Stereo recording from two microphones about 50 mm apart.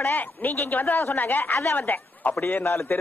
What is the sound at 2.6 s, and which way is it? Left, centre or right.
Speech, left.